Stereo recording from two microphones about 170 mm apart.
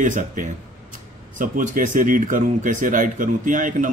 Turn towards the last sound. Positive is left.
turn(degrees=-50)  # may be behind; listen again after turning